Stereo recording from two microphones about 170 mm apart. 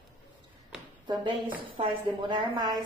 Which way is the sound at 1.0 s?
30° right (ahead or behind).